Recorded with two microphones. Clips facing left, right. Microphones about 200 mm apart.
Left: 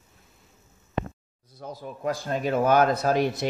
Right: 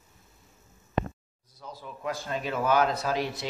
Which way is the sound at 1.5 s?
50° left (ahead or behind).